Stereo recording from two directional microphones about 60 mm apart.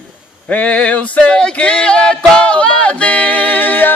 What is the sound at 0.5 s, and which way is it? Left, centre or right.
Male singing, left.